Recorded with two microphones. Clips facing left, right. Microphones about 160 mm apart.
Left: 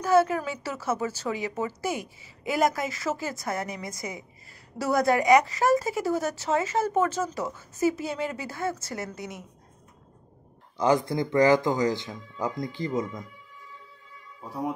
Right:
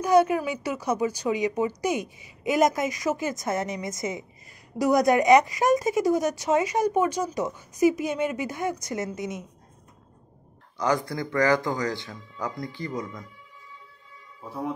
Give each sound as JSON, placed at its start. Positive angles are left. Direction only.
{"t": 0.0, "sound": "speech", "side_deg": -15}
{"t": 10.8, "sound": "speech", "side_deg": 20}